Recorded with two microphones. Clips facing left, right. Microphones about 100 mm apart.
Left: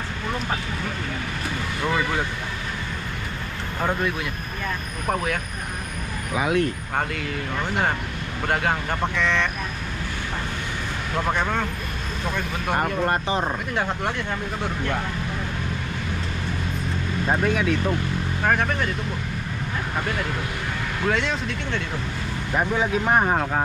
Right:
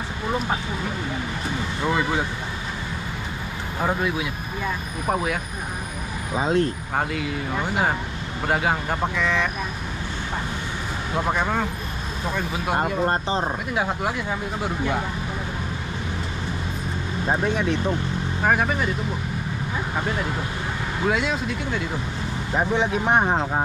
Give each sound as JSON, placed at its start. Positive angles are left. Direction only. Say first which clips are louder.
{"t": 1.8, "sound": "speech", "louder": "right 1 dB", "side_deg": -10}
{"t": 3.8, "sound": "speech", "louder": "right 1 dB", "side_deg": -5}
{"t": 6.3, "sound": "speech", "louder": "right 1 dB", "side_deg": -25}
{"t": 7.0, "sound": "speech", "louder": "right 2 dB", "side_deg": -5}
{"t": 11.1, "sound": "speech", "louder": "right 1 dB", "side_deg": -10}
{"t": 17.4, "sound": "speech", "louder": "left 1 dB", "side_deg": -15}
{"t": 20.0, "sound": "speech", "louder": "right 1 dB", "side_deg": -5}